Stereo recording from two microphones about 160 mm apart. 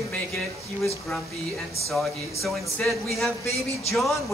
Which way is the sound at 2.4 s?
Centre (ahead or behind).